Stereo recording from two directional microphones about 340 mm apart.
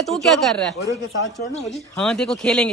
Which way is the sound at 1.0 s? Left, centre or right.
Left.